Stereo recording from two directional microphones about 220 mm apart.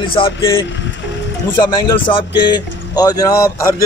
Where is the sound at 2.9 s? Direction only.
15° left (ahead or behind).